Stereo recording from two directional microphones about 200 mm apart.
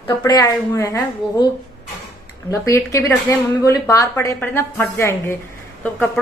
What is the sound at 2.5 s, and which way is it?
A woman's voice, 15° left (ahead or behind).